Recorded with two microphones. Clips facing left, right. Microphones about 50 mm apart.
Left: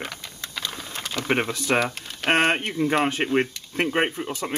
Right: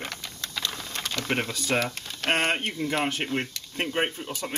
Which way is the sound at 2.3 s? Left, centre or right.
Left.